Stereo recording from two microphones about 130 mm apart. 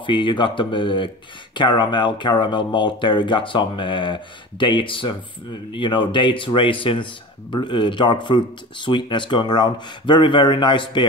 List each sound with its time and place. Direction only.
0.0 s speech: 40° left (ahead or behind)